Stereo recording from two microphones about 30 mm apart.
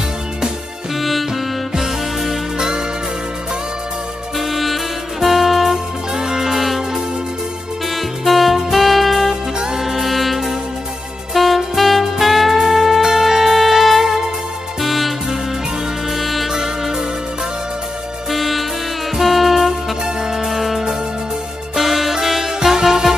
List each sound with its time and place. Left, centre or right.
0.9 s music: centre
1.8 s music: centre
4.4 s music: centre
6.1 s music: centre
7.9 s music: centre
16.4 s music: centre
18.3 s music: centre
20.2 s music: centre
20.4 s music: centre